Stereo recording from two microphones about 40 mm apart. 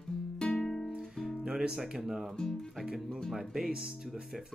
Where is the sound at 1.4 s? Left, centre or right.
Centre.